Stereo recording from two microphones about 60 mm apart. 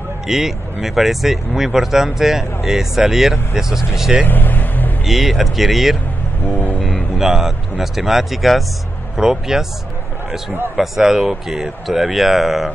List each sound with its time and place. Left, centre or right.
0.3 s speech: centre
4.3 s vehicle: left
5.0 s speech: centre
7.2 s speech: centre
10.8 s speech: centre